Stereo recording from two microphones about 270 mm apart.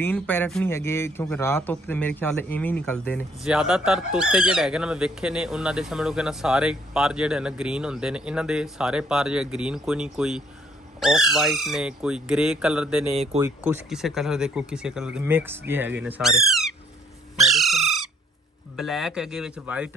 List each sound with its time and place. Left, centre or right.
0.0 s a man's voice: centre
13.1 s speech: right
13.4 s a man's voice: centre
17.4 s crow: centre
18.8 s a man's voice: centre